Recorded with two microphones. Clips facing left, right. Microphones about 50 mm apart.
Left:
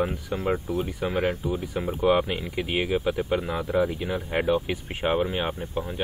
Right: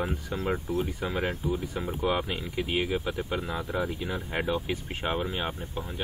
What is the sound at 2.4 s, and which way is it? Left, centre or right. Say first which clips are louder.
Speech: left 2 dB; centre.